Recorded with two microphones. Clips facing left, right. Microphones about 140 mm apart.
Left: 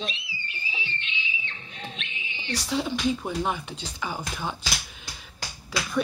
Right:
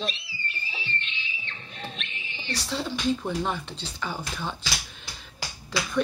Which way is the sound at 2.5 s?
10° left (ahead or behind).